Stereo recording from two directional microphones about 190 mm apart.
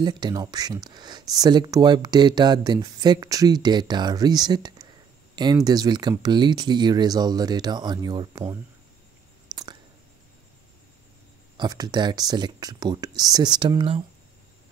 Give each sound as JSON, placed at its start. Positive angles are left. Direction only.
{"t": 0.0, "sound": "speech", "side_deg": -20}
{"t": 9.5, "sound": "a sound", "side_deg": -20}
{"t": 11.5, "sound": "speech", "side_deg": -20}